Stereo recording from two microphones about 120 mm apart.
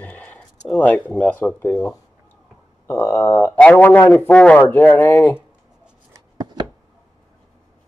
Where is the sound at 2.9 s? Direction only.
20° left (ahead or behind).